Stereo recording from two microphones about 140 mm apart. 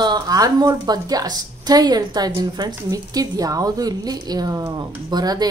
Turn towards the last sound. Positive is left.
turn(degrees=-30)  # may be behind; listen again after turning